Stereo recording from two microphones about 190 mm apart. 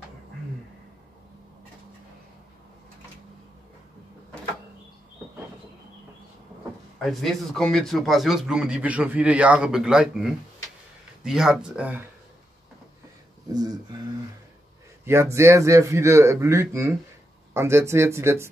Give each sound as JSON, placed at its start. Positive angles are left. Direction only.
{"t": 7.0, "sound": "a man's voice", "side_deg": 0}
{"t": 13.5, "sound": "speech", "side_deg": -20}
{"t": 15.3, "sound": "speech", "side_deg": -15}